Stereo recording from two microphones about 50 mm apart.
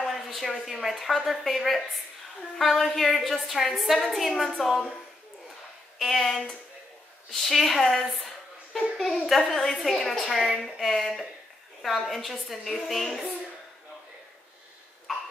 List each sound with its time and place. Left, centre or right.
0.0 s a woman's voice: centre
5.9 s a woman's voice: centre
15.1 s cough: centre